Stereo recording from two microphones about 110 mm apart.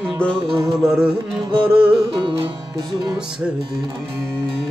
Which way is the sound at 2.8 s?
40° right (ahead or behind).